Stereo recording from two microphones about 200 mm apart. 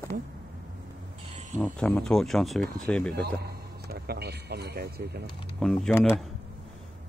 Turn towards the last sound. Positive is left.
turn(degrees=0)  # may be behind; listen again after turning